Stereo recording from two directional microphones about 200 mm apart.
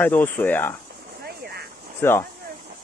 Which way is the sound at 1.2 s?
50° right (ahead or behind).